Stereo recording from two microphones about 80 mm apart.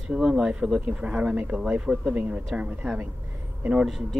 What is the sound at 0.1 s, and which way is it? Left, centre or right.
Speech, centre.